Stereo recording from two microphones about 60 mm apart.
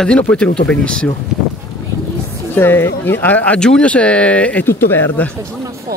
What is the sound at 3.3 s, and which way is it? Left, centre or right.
A man's voice, left.